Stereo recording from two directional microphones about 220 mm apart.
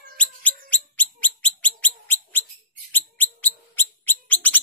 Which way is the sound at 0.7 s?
5° left (ahead or behind).